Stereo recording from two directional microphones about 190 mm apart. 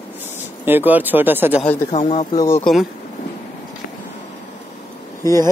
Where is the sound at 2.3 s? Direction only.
15° left (ahead or behind).